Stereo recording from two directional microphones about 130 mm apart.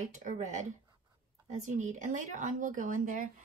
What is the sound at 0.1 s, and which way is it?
A woman's voice, 70° right (ahead or behind).